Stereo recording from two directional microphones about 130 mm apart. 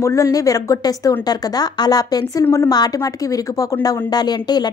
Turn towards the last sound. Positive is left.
turn(degrees=30)  # may be behind; listen again after turning